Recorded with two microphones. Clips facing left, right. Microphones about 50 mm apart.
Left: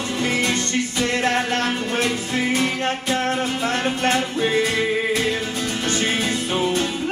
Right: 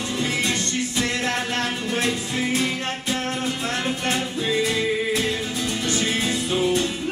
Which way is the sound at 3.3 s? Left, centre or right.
Left.